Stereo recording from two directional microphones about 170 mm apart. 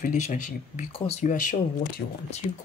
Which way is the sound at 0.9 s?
35° left (ahead or behind).